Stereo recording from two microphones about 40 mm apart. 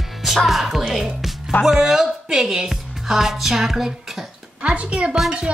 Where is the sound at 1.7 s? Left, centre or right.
Centre.